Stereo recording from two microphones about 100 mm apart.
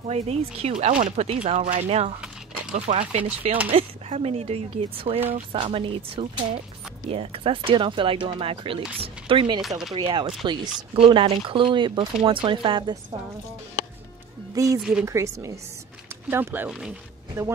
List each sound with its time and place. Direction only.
0.1 s speech: 90° right
2.9 s speech: 80° right
3.7 s speech: 90° right
5.3 s speech: 65° right (ahead or behind)
9.6 s speech: centre (ahead or behind)
9.9 s speech: 55° right (ahead or behind)
11.0 s speech: 65° right (ahead or behind)
14.5 s speech: 35° right (ahead or behind)
14.8 s speech: 5° right (ahead or behind)
15.0 s a woman's voice: 30° right (ahead or behind)
16.3 s speech: 20° right (ahead or behind)